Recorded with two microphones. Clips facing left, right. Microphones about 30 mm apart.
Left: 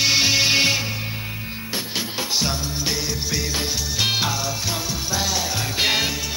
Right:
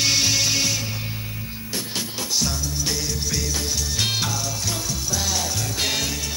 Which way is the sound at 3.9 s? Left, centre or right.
Centre.